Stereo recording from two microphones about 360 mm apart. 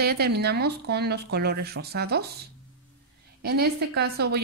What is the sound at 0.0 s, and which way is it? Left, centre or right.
A woman's voice, right.